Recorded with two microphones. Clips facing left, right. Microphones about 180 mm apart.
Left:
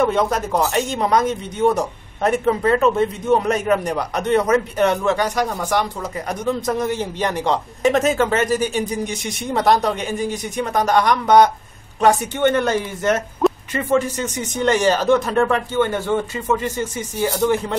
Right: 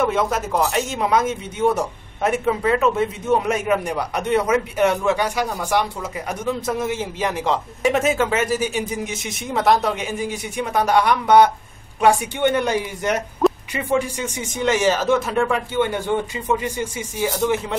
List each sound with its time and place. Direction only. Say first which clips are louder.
0.0 s a man's voice: left 2 dB; 5° right (ahead or behind)
13.4 s a sound: even; centre (ahead or behind)
13.7 s a man's voice: left 3 dB; 10° right (ahead or behind)